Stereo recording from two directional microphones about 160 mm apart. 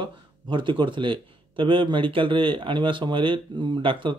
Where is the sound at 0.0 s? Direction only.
30° right (ahead or behind).